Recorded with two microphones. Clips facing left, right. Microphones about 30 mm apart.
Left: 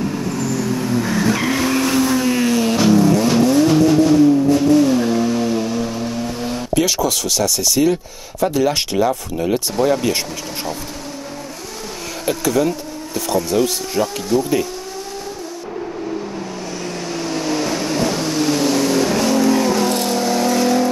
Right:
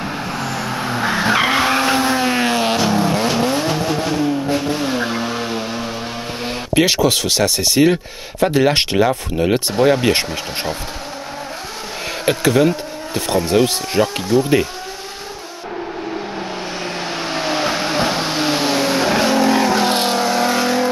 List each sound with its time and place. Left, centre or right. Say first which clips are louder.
0.0 s vehicle: left 2 dB; right
6.7 s speech: right 3 dB; right
12.3 s speech: right 3 dB; right
17.0 s vehicle: even; right